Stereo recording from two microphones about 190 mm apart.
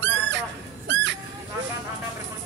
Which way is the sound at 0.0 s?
70° right (ahead or behind).